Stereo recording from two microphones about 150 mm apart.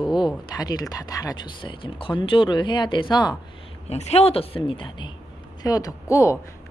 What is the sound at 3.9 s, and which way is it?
A woman's voice, 45° left (ahead or behind).